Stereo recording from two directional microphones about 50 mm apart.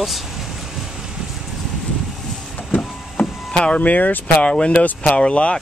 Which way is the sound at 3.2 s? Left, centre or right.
Left.